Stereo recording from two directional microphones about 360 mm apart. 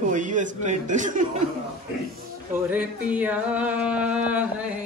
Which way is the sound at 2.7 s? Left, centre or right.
Centre.